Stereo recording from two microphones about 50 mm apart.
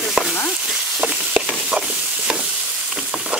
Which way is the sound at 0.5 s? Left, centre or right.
Centre.